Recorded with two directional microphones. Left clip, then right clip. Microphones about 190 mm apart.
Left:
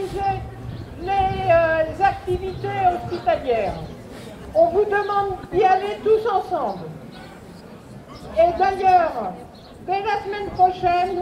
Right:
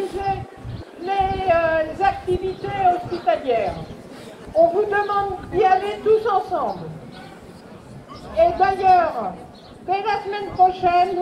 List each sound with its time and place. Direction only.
1.0 s a sound: 65° left (ahead or behind)
4.7 s a man's voice: 60° left (ahead or behind)
8.4 s a woman's voice: 35° left (ahead or behind); by 11.1 s 15° left (ahead or behind)